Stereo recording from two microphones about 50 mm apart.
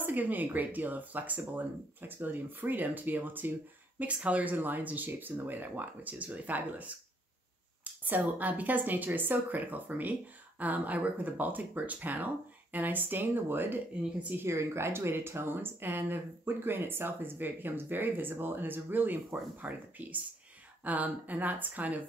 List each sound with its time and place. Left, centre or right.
0.0 s speech: right
4.0 s speech: right
14.4 s speech: right